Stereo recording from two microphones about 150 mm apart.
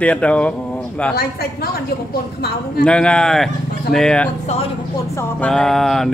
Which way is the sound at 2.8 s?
5° left (ahead or behind).